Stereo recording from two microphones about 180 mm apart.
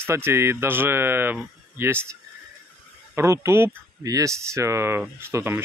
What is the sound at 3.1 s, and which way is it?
Speech, 15° right (ahead or behind).